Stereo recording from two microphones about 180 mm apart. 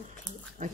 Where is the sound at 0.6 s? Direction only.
50° right (ahead or behind).